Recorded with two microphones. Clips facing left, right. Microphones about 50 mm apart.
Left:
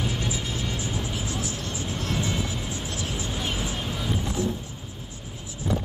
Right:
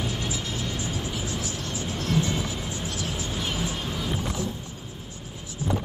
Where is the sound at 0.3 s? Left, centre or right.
Left.